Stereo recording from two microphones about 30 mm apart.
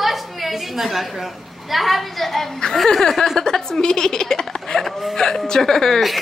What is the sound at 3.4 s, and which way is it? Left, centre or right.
Speech, centre.